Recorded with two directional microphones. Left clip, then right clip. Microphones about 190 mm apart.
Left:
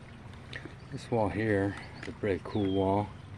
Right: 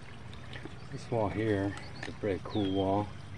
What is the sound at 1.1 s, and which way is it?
Speech, 25° left (ahead or behind).